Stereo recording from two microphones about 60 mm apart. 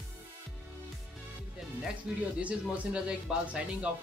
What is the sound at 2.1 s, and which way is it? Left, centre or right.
Speech, centre.